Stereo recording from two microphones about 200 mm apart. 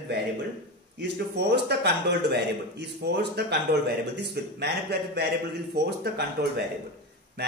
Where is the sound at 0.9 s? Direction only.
55° right (ahead or behind).